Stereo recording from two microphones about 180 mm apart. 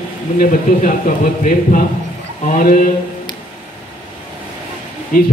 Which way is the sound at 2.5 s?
50° left (ahead or behind).